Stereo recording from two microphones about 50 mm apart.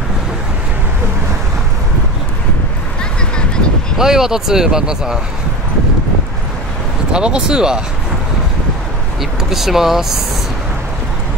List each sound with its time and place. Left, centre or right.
3.0 s a sound: centre
4.0 s speech: centre
7.1 s speech: centre
9.2 s speech: centre